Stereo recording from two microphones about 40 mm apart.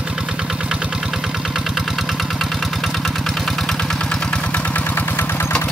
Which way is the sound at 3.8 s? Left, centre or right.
Centre.